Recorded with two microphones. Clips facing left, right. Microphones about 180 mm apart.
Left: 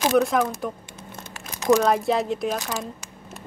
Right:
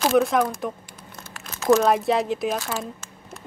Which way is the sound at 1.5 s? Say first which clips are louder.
Right 1 dB; 15° left (ahead or behind).